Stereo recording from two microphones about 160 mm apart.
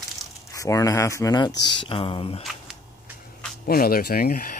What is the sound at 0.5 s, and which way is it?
Speech, 20° left (ahead or behind).